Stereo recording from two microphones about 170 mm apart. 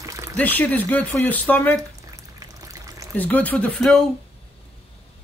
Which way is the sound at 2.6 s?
20° right (ahead or behind).